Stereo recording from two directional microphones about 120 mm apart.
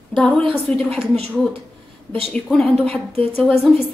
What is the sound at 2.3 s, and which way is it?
Speech, 5° left (ahead or behind).